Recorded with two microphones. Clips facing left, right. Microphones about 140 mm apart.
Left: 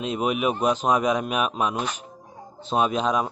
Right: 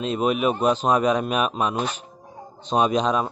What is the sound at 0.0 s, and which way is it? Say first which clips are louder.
A man's voice: right 2 dB; 10° left (ahead or behind).